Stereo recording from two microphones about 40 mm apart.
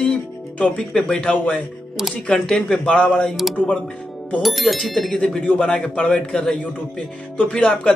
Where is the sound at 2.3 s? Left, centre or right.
Centre.